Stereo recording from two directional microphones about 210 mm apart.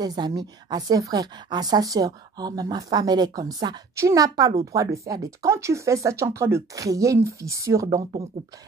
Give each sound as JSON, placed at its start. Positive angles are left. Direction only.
{"t": 0.0, "sound": "a woman's voice", "side_deg": -20}